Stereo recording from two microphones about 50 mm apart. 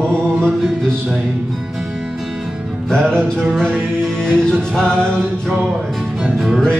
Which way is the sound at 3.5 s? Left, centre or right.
Centre.